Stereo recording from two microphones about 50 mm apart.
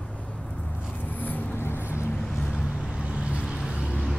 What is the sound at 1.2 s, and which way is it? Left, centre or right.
Vehicle, left.